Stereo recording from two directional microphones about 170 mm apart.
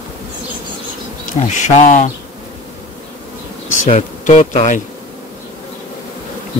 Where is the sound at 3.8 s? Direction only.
45° left (ahead or behind).